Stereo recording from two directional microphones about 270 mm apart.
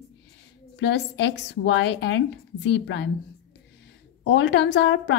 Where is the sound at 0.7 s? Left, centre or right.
Left.